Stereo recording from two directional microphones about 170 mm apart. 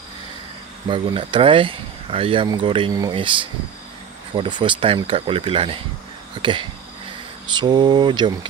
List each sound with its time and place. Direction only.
0.8 s speech: 30° right (ahead or behind)
4.4 s speech: 30° right (ahead or behind)